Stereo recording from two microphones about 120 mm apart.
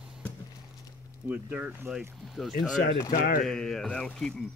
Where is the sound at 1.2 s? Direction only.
15° right (ahead or behind).